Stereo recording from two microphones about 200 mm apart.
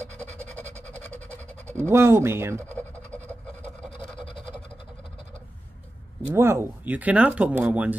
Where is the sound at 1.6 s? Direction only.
15° right (ahead or behind).